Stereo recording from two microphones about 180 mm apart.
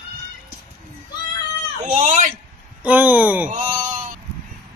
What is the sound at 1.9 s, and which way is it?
Speech, 45° right (ahead or behind).